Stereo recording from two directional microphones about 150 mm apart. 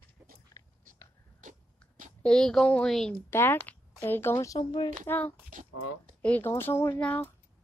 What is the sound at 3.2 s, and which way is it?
Speech, 15° left (ahead or behind).